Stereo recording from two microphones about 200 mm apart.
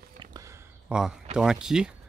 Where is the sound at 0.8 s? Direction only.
5° right (ahead or behind).